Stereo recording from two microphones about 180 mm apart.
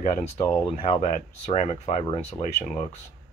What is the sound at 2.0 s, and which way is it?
Speech, 30° left (ahead or behind).